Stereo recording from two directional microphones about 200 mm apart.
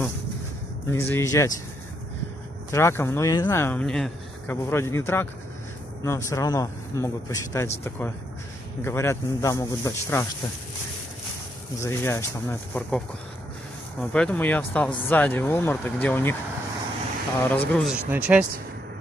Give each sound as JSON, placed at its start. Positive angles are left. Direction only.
{"t": 0.8, "sound": "speech", "side_deg": 10}
{"t": 2.7, "sound": "speech", "side_deg": 15}
{"t": 8.8, "sound": "speech", "side_deg": 15}
{"t": 11.8, "sound": "speech", "side_deg": 10}
{"t": 14.1, "sound": "speech", "side_deg": 5}
{"t": 17.5, "sound": "speech", "side_deg": 10}
{"t": 17.8, "sound": "speech", "side_deg": -10}